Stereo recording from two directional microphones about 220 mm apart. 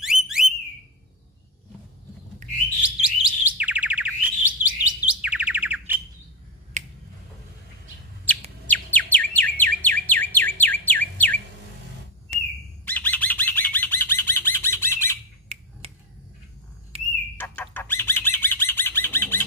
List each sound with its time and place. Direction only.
0.0 s a sound: centre (ahead or behind)
2.4 s bird: 35° right (ahead or behind)
3.3 s chirp: 5° right (ahead or behind)
6.8 s finger snapping: 30° right (ahead or behind)
8.6 s chirp: 5° left (ahead or behind)
12.3 s a sound: 30° right (ahead or behind)
12.8 s bird: 10° left (ahead or behind)
15.4 s finger snapping: 30° right (ahead or behind)
16.9 s a sound: 25° right (ahead or behind)
17.4 s bird: 10° left (ahead or behind)